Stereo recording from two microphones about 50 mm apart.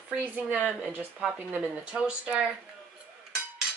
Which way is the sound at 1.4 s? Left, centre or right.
Right.